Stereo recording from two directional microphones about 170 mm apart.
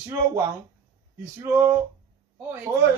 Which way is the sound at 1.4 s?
15° right (ahead or behind).